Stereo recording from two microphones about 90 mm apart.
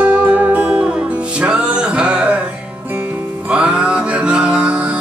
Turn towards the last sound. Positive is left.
turn(degrees=-15)  # may be behind; listen again after turning